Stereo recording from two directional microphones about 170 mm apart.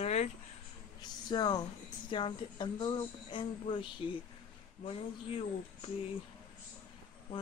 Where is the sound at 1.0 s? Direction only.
25° left (ahead or behind).